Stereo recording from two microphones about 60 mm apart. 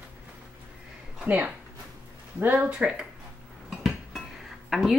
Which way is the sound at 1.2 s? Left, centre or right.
Right.